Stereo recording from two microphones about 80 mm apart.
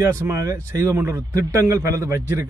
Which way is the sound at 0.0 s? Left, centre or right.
Right.